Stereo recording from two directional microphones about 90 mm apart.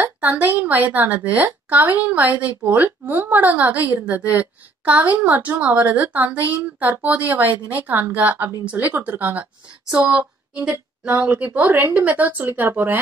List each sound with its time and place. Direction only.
0.0 s a woman's voice: 20° right (ahead or behind)
11.2 s a woman's voice: 20° right (ahead or behind)